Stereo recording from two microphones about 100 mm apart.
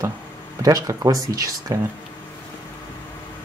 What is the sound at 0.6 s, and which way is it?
Speech, 35° right (ahead or behind).